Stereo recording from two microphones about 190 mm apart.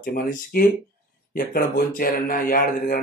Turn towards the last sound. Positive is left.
turn(degrees=50)  # may be behind; listen again after turning